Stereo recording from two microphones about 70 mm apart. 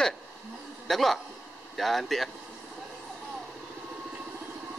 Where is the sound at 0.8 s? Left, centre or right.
Centre.